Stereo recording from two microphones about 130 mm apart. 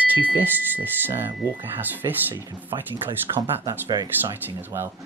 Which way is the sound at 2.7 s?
30° right (ahead or behind).